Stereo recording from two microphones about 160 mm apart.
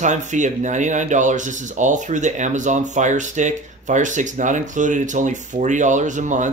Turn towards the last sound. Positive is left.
turn(degrees=-50)  # may be behind; listen again after turning